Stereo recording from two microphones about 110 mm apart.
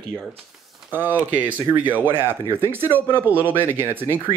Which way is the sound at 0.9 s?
20° right (ahead or behind).